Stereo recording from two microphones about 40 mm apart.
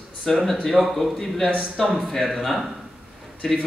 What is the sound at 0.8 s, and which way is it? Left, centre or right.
Speech, right.